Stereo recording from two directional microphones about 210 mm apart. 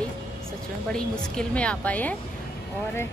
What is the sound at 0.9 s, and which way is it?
A woman's voice, 5° left (ahead or behind).